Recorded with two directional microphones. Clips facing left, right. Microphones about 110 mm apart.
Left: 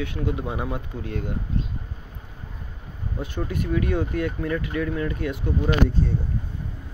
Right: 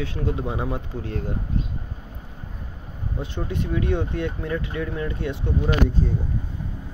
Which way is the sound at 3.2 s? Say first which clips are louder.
Even; 25° right (ahead or behind).